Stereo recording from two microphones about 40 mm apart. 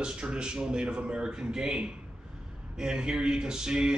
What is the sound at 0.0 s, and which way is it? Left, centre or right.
Speech, right.